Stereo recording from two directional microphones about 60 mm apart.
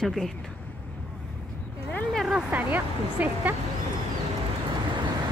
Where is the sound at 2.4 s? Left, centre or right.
Right.